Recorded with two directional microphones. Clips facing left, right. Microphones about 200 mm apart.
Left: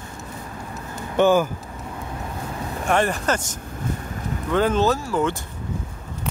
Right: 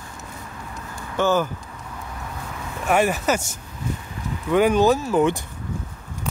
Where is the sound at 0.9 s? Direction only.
20° left (ahead or behind).